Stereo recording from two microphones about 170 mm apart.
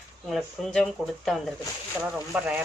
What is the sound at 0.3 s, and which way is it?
Speech, 5° left (ahead or behind).